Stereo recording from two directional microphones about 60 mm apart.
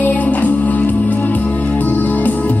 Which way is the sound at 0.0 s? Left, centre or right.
Left.